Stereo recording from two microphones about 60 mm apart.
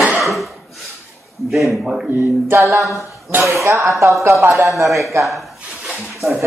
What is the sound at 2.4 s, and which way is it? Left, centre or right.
Speech, right.